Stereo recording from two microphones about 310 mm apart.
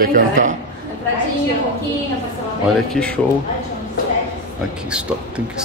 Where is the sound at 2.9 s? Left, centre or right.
Centre.